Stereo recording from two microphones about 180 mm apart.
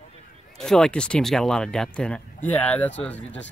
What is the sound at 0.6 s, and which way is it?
Speech, 5° left (ahead or behind).